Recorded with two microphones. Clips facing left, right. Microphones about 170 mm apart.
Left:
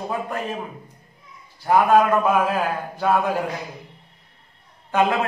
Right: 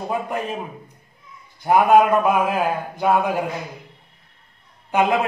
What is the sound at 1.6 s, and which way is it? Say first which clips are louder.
A man's voice: right 2 dB; 15° right (ahead or behind).